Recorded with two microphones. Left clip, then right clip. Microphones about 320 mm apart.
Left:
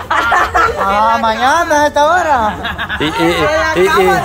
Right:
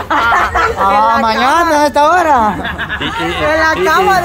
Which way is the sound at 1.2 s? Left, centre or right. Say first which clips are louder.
Right 1 dB; right.